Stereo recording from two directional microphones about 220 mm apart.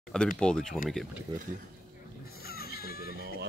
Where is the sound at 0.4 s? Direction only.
5° left (ahead or behind).